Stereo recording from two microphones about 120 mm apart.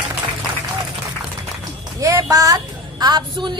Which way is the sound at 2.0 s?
25° right (ahead or behind).